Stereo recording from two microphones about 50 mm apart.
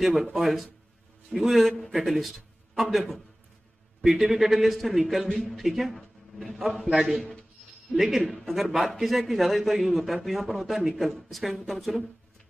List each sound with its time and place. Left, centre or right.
0.0 s a man's voice: centre